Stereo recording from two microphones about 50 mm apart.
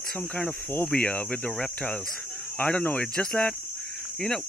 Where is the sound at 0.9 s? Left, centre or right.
Left.